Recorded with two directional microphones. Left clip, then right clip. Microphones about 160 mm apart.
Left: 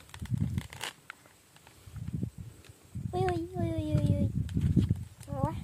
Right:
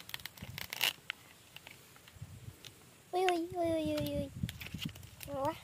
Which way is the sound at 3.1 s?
15° left (ahead or behind).